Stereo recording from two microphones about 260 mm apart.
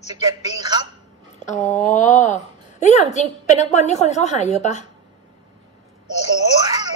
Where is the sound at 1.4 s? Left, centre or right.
Left.